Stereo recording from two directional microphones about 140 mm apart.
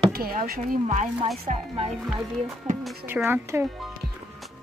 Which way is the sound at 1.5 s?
55° right (ahead or behind).